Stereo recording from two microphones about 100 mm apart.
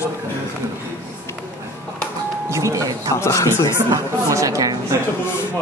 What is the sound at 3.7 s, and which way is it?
A woman's voice, 30° right (ahead or behind).